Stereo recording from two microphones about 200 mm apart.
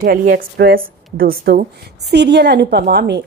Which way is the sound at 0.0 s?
45° right (ahead or behind).